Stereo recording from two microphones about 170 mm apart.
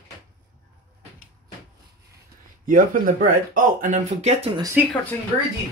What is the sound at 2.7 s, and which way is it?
Speech, 50° right (ahead or behind).